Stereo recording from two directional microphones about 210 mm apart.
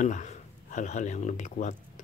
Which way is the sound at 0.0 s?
35° left (ahead or behind).